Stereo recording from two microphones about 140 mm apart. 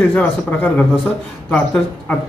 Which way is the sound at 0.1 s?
10° left (ahead or behind).